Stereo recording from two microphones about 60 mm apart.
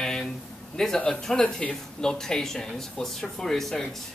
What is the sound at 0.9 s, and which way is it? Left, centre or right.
Speech, centre.